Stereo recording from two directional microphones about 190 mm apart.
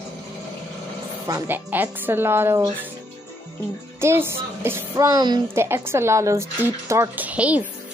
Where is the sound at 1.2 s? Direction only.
15° right (ahead or behind).